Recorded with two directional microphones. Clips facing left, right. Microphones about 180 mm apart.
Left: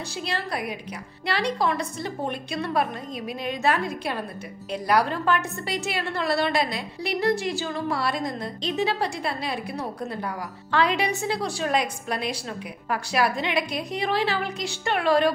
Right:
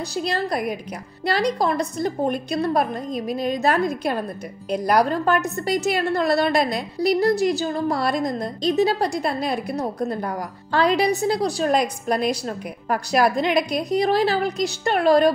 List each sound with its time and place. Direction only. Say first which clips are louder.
0.1 s a woman's voice: right 6 dB; 40° right (ahead or behind)